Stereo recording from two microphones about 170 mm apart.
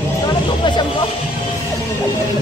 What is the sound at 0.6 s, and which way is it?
Speech, 30° left (ahead or behind).